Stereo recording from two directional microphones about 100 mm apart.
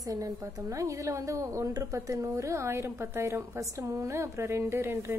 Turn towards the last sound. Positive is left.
turn(degrees=-25)  # may be behind; listen again after turning